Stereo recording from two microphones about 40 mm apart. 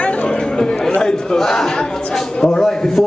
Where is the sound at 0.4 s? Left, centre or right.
Centre.